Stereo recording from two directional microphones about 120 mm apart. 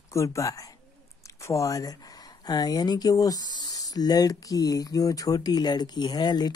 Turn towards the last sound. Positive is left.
turn(degrees=35)  # may be behind; listen again after turning